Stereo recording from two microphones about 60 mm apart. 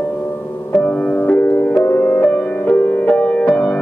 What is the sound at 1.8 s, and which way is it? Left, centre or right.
Music, left.